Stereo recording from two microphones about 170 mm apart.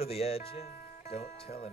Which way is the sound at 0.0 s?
35° left (ahead or behind).